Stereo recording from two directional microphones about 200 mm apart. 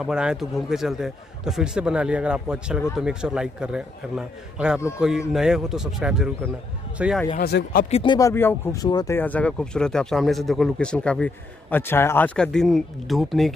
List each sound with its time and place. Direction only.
0.0 s speech: 5° right (ahead or behind)
7.3 s speech: 50° left (ahead or behind)
7.9 s speech: 25° left (ahead or behind); by 13.6 s centre (ahead or behind)